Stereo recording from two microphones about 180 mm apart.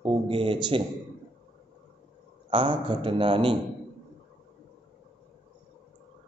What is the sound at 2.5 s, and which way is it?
A man's voice, 30° right (ahead or behind).